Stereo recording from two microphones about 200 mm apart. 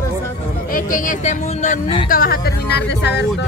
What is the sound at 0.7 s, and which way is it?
Speech, 40° left (ahead or behind).